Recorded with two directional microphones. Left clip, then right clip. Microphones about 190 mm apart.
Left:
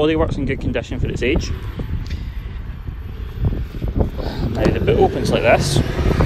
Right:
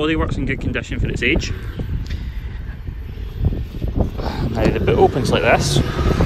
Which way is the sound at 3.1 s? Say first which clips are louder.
Even; 45° left (ahead or behind).